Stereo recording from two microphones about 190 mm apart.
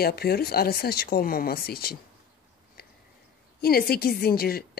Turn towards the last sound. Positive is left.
turn(degrees=55)  # may be behind; listen again after turning